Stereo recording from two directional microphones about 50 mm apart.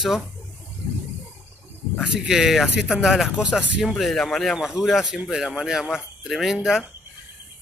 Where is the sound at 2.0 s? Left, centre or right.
Right.